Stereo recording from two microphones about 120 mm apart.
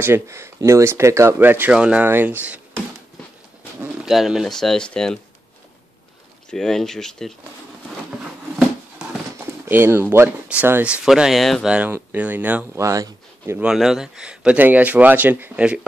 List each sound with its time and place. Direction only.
0.0 s speech: 20° right (ahead or behind)
4.0 s speech: 5° right (ahead or behind)
6.5 s speech: 5° left (ahead or behind)
8.2 s a sound: 5° right (ahead or behind)
9.7 s speech: 20° right (ahead or behind); by 11.7 s centre (ahead or behind)
11.7 s speech: 15° right (ahead or behind)
12.8 s speech: 25° right (ahead or behind)
13.6 s speech: 5° right (ahead or behind)